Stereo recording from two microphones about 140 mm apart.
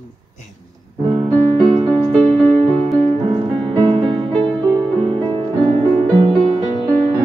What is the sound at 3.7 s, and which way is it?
Music, 30° right (ahead or behind).